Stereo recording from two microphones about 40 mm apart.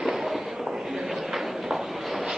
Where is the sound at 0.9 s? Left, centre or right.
Centre.